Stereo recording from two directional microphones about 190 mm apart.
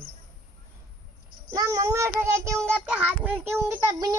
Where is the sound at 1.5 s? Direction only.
20° right (ahead or behind).